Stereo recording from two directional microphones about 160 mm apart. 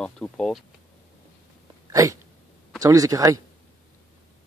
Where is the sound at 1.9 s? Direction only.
20° right (ahead or behind).